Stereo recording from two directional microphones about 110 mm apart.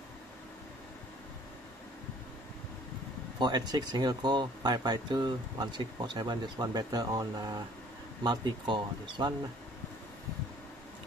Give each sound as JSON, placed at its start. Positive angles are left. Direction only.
{"t": 3.3, "sound": "speech", "side_deg": -40}